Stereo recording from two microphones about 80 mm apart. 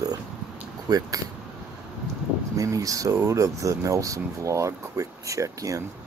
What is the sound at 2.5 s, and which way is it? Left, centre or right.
Speech, right.